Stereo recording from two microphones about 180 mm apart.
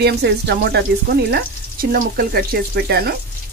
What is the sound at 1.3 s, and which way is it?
Speech, 55° right (ahead or behind).